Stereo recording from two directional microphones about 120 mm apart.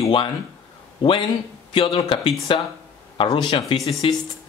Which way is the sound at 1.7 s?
50° left (ahead or behind).